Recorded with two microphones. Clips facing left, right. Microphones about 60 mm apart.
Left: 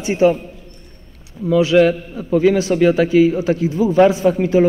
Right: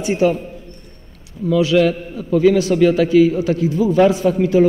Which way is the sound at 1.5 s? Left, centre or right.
Left.